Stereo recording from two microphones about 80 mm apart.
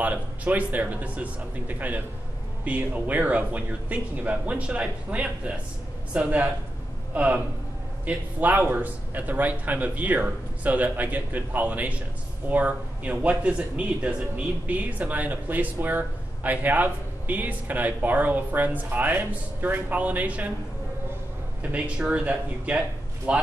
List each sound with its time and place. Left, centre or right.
0.0 s speech: right
21.7 s speech: centre